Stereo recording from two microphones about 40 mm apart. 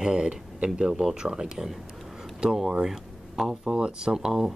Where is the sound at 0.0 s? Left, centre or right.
Centre.